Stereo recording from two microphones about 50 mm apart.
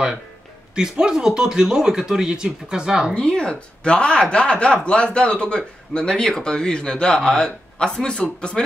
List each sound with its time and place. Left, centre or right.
0.7 s speech: centre
3.2 s speech: centre